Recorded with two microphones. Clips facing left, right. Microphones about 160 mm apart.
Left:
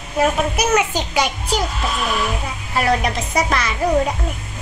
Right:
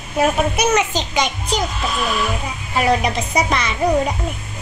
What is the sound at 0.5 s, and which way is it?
Speech, 5° left (ahead or behind).